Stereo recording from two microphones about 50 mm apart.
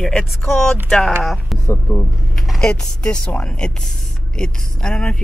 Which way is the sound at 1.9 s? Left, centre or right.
Left.